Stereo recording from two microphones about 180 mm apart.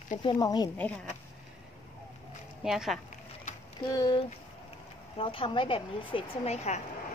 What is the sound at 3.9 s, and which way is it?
Speech, 25° left (ahead or behind).